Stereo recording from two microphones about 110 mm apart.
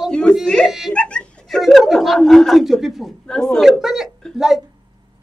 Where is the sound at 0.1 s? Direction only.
10° left (ahead or behind).